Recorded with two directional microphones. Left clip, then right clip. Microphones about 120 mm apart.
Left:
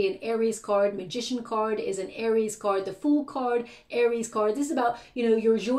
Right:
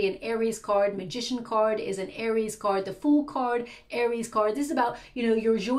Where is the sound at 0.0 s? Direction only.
20° left (ahead or behind).